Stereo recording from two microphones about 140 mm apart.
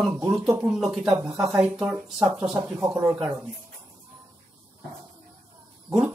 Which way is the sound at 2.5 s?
20° right (ahead or behind).